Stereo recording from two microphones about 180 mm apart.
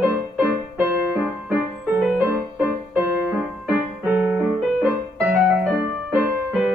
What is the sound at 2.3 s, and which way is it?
Music, 10° right (ahead or behind).